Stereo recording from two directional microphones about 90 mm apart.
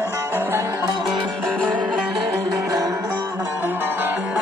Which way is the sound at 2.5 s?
40° right (ahead or behind).